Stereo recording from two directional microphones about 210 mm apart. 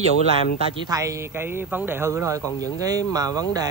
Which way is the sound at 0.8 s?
15° right (ahead or behind).